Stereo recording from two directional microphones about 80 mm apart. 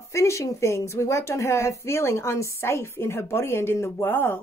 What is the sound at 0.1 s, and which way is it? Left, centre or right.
Speech, left.